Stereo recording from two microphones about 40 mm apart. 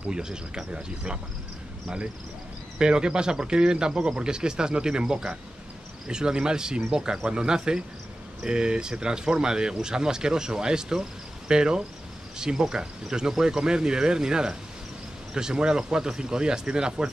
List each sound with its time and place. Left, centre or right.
0.1 s speech: centre
2.8 s speech: right